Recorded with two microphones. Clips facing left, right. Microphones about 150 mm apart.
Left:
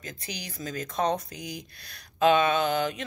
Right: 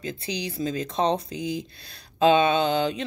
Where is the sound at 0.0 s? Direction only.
30° right (ahead or behind).